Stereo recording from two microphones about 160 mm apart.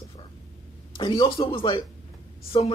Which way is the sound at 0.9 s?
30° left (ahead or behind).